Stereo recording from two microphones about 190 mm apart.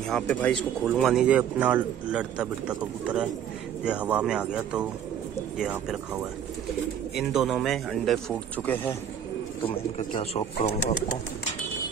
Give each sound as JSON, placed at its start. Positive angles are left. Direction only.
{"t": 0.1, "sound": "speech", "side_deg": 5}
{"t": 7.2, "sound": "speech", "side_deg": 0}
{"t": 9.6, "sound": "speech", "side_deg": 30}